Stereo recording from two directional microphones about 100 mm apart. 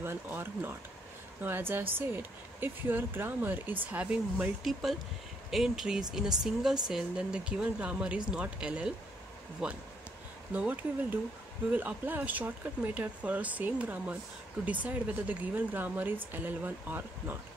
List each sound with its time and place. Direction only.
0.0 s speech: 25° right (ahead or behind)
4.6 s speech: centre (ahead or behind); by 17.4 s 20° right (ahead or behind)